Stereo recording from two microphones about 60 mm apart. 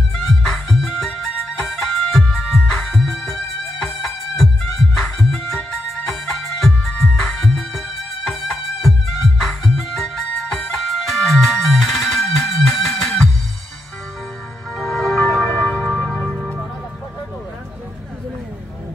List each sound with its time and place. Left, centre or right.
0.5 s music: centre
14.8 s music: centre